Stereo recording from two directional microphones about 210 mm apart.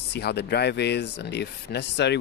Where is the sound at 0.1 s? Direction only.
55° left (ahead or behind).